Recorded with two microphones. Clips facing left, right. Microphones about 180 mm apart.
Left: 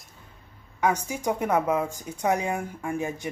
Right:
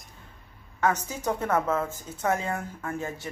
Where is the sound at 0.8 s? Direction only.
10° left (ahead or behind).